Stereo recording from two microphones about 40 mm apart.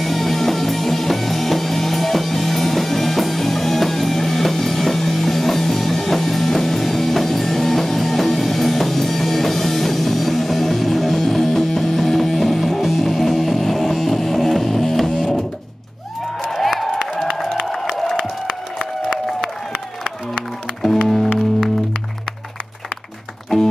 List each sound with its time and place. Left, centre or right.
0.0 s music: centre
16.4 s a sound: centre
21.1 s music: centre
23.5 s music: centre